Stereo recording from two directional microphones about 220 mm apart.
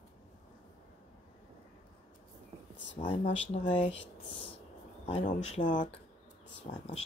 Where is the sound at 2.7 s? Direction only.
55° left (ahead or behind).